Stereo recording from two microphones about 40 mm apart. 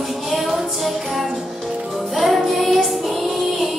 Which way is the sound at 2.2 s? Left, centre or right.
Centre.